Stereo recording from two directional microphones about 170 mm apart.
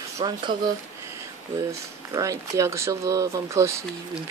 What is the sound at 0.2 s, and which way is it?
Speech, 30° right (ahead or behind).